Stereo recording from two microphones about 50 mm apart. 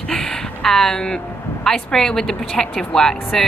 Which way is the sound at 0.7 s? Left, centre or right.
Centre.